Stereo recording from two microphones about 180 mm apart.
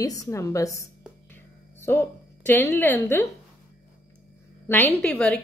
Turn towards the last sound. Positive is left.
turn(degrees=5)  # may be behind; listen again after turning